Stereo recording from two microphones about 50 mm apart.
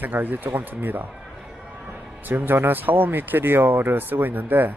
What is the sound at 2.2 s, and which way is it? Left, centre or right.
Speech, right.